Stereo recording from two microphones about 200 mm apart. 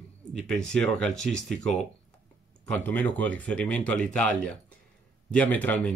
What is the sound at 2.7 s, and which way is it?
Speech, 10° left (ahead or behind).